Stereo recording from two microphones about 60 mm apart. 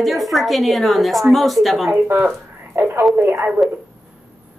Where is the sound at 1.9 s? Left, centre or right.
Right.